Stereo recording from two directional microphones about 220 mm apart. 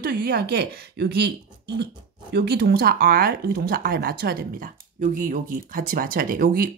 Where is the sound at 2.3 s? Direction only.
45° right (ahead or behind).